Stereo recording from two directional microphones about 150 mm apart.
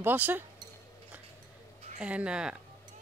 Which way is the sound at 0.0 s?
10° right (ahead or behind).